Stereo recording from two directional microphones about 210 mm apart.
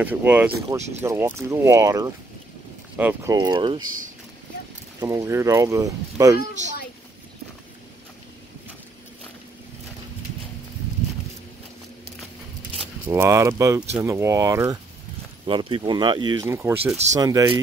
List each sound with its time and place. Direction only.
0.0 s speech: 10° right (ahead or behind)
3.3 s speech: 20° right (ahead or behind)
5.0 s speech: 15° right (ahead or behind)
13.0 s speech: 10° right (ahead or behind)